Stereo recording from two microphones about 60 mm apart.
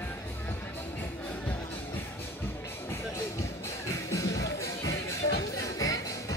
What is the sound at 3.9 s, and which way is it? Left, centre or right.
Music, left.